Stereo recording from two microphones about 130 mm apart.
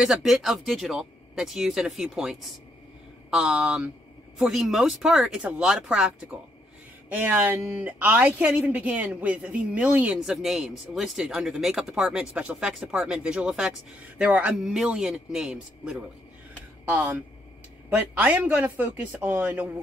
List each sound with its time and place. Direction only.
0.0 s a woman's voice: centre (ahead or behind)